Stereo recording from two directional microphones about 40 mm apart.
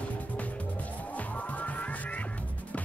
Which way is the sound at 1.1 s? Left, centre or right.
Left.